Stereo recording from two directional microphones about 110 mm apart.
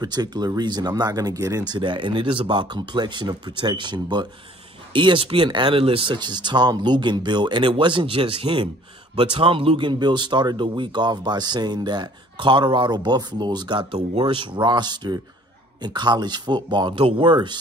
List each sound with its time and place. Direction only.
0.0 s speech: 40° right (ahead or behind)
1.7 s speech: 45° right (ahead or behind)